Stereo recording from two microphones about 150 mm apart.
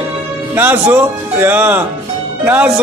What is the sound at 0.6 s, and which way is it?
Speech, 15° right (ahead or behind).